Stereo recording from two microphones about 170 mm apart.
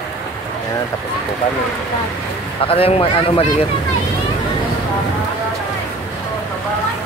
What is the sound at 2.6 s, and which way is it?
Speech, 35° left (ahead or behind).